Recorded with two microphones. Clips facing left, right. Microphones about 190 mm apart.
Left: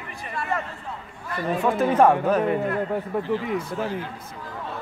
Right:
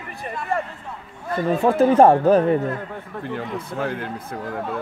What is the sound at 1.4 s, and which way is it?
Speech, 30° right (ahead or behind).